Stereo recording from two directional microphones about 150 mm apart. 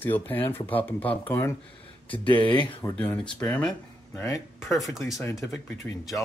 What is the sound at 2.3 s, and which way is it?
Speech, 30° left (ahead or behind).